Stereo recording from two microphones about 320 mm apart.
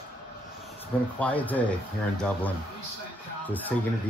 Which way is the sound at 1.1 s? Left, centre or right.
Centre.